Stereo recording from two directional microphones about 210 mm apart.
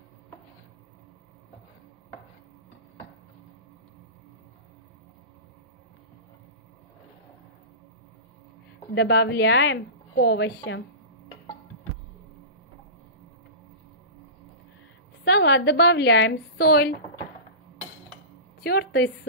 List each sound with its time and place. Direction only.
8.9 s a woman's voice: 55° left (ahead or behind)
15.2 s a woman's voice: 55° left (ahead or behind)
18.6 s a woman's voice: 50° left (ahead or behind)